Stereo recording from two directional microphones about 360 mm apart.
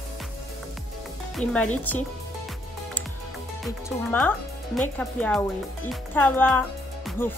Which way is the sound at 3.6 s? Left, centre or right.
Centre.